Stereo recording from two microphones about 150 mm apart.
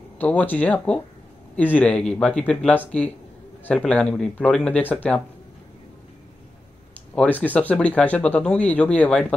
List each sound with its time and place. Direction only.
0.2 s speech: 10° left (ahead or behind)
7.4 s speech: 10° left (ahead or behind)